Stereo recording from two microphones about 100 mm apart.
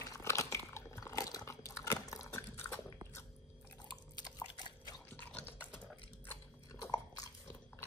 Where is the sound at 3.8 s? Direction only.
45° left (ahead or behind).